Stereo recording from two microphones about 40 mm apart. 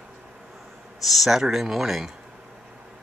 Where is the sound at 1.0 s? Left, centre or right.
Centre.